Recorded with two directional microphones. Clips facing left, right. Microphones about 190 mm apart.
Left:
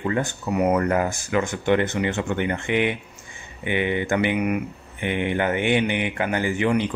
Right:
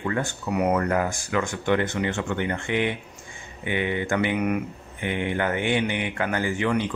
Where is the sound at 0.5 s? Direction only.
10° left (ahead or behind).